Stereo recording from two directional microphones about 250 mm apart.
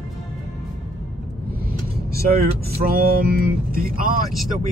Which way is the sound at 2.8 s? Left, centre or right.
Right.